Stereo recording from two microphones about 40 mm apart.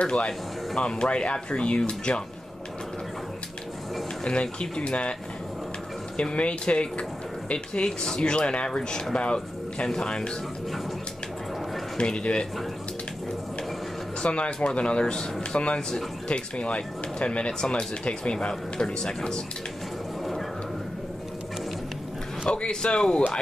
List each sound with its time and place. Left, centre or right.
0.0 s speech: left
4.2 s speech: left
6.3 s speech: left
12.0 s speech: left
14.2 s speech: left
22.4 s speech: left